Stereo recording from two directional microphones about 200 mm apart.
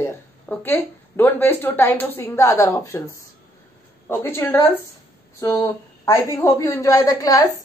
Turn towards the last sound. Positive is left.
turn(degrees=15)  # may be behind; listen again after turning